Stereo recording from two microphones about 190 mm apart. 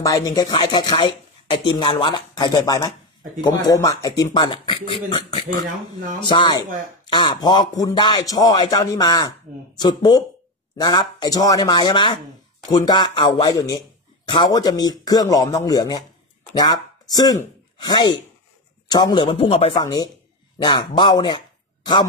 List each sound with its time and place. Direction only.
0.0 s speech: 20° left (ahead or behind)
19.7 s speech: 20° left (ahead or behind)